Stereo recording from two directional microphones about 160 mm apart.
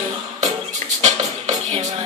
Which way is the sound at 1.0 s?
45° right (ahead or behind).